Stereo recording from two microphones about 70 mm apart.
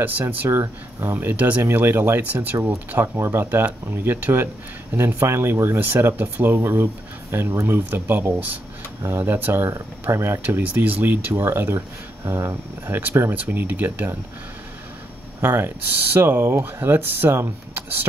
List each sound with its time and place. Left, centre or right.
0.5 s speech: right
1.6 s speech: right
3.2 s speech: right
3.4 s speech: right
10.4 s speech: right
11.3 s speech: right
13.3 s speech: right
15.4 s speech: right